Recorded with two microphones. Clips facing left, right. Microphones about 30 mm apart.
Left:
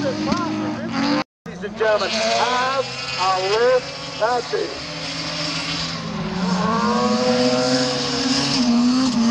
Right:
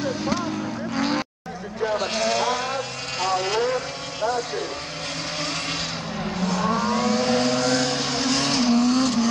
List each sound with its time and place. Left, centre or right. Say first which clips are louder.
0.0 s vehicle: left 4 dB; left
0.9 s cattle: left 3 dB; left
1.8 s speech: left 5 dB; left
6.3 s vehicle: left 3 dB; left